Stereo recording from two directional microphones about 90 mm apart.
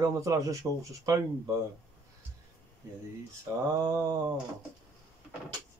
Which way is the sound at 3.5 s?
35° right (ahead or behind).